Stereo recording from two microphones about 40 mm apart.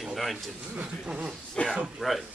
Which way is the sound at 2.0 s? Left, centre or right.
Centre.